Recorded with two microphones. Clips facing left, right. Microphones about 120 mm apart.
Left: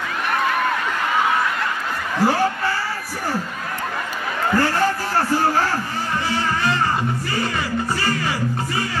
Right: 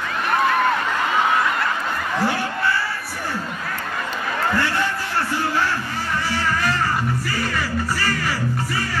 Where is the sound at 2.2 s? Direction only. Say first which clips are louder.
Left 7 dB; 35° left (ahead or behind).